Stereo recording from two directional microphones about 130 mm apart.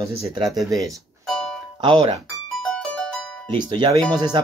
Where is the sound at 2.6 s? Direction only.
5° left (ahead or behind).